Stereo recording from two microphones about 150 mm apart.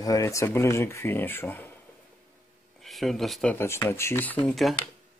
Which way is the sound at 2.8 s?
Centre (ahead or behind).